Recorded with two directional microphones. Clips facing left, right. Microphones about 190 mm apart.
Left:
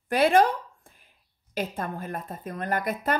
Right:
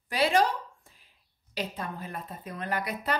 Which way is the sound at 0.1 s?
55° left (ahead or behind).